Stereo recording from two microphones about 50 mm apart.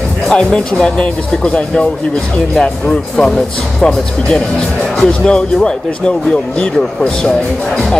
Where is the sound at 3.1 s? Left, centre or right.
Centre.